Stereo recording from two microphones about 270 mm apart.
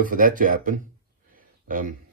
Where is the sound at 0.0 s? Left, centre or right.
Right.